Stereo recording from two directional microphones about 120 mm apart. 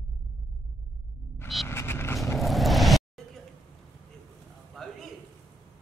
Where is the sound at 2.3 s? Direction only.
Centre (ahead or behind).